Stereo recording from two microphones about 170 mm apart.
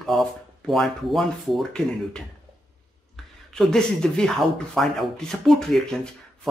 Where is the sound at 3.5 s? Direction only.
5° left (ahead or behind).